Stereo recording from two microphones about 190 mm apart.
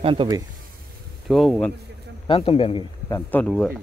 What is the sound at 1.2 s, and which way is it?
Speech, centre (ahead or behind).